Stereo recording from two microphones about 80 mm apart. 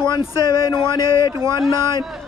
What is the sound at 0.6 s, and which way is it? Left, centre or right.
Speech, left.